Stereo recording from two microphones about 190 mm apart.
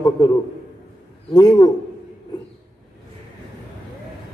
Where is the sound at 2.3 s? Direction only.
20° left (ahead or behind).